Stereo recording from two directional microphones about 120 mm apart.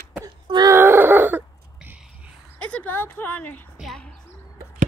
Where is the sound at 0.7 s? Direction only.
20° right (ahead or behind).